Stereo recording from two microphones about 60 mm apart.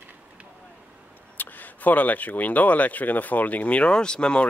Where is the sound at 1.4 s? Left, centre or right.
Left.